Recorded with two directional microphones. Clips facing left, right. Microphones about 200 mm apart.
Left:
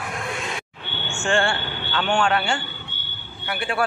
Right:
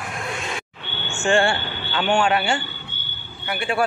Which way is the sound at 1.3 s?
15° right (ahead or behind).